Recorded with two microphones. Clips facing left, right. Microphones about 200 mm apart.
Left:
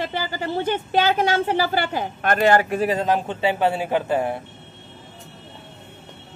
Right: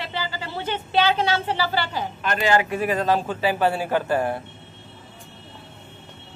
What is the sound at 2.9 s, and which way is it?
A man's voice, 20° left (ahead or behind).